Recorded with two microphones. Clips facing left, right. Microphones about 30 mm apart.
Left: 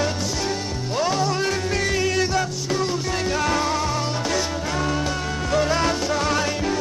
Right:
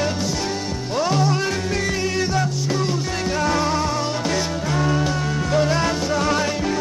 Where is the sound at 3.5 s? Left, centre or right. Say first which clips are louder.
Right 2 dB; right.